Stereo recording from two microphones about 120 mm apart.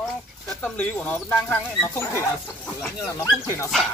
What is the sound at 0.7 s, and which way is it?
Speech, 15° left (ahead or behind).